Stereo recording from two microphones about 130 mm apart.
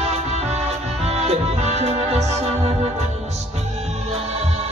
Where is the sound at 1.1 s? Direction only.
55° right (ahead or behind).